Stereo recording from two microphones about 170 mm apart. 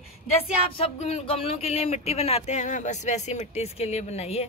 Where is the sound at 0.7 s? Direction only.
35° left (ahead or behind).